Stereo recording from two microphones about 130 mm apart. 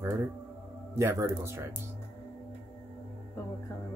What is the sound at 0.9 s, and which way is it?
Speech, 25° right (ahead or behind).